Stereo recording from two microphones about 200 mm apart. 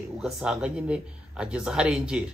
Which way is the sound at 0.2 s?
5° right (ahead or behind).